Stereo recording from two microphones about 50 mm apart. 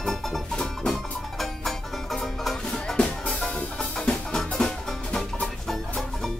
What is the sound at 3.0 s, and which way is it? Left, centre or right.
Music, left.